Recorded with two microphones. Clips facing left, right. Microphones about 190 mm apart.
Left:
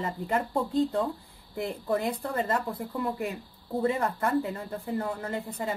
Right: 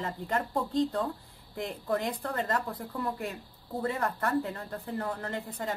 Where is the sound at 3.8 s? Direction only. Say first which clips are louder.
Left 4 dB; 15° left (ahead or behind).